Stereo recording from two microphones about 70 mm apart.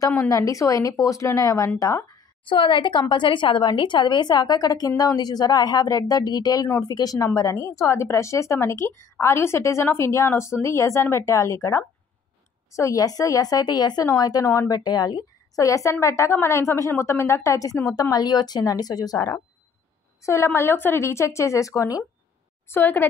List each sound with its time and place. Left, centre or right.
0.3 s a woman's voice: left
3.0 s a woman's voice: left
7.3 s a woman's voice: left
14.0 s a woman's voice: left
14.8 s a woman's voice: left
18.1 s a woman's voice: left
20.2 s a woman's voice: left
22.7 s a woman's voice: left